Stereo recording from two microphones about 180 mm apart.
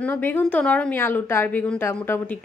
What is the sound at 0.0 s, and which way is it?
A woman's voice, 10° left (ahead or behind).